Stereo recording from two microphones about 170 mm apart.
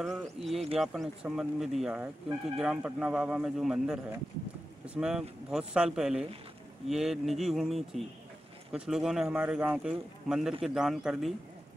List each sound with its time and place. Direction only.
0.0 s speech: centre (ahead or behind)